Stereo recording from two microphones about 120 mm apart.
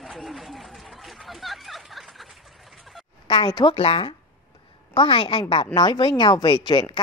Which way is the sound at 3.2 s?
40° left (ahead or behind).